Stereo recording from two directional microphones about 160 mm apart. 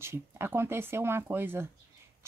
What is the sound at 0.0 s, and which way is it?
Speech, 15° right (ahead or behind).